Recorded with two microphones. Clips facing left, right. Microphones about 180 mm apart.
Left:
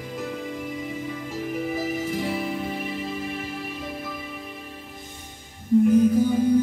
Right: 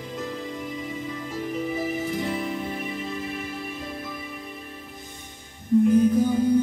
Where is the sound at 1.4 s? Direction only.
5° left (ahead or behind).